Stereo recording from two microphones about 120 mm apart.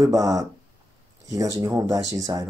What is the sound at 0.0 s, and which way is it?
Speech, 30° right (ahead or behind).